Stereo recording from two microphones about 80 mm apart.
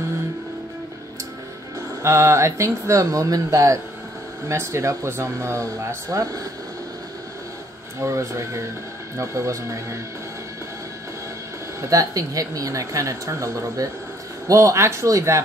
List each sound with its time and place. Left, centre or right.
2.0 s speech: right
8.0 s speech: right
11.8 s speech: right